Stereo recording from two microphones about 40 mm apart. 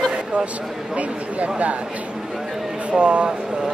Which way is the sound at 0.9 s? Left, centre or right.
Right.